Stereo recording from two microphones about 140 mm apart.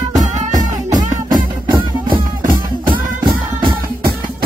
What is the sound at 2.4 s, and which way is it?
Music, 90° right.